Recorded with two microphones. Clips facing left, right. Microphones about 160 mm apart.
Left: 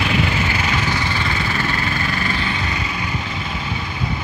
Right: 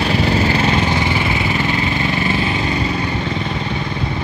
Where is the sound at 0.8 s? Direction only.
20° right (ahead or behind).